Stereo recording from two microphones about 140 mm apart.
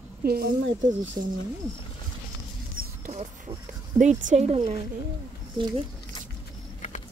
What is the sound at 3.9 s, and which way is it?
Speech, 60° right (ahead or behind).